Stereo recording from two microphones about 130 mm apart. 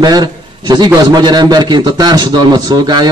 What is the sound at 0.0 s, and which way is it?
A man's voice, 30° right (ahead or behind).